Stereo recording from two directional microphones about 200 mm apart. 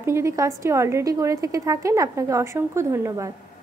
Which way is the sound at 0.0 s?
15° right (ahead or behind).